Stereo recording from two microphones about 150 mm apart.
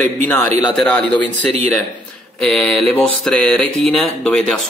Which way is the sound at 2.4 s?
5° left (ahead or behind).